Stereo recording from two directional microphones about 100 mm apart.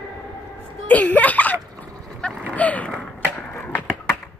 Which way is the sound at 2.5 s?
15° left (ahead or behind).